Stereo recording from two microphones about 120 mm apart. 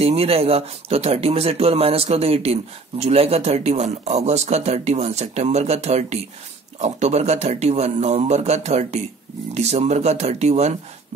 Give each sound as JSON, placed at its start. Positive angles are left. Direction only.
{"t": 0.0, "sound": "a man's voice", "side_deg": -55}